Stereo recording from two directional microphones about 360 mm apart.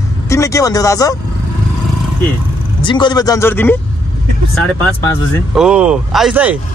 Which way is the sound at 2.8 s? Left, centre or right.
Centre.